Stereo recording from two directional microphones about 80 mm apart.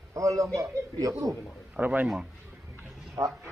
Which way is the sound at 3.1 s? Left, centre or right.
Right.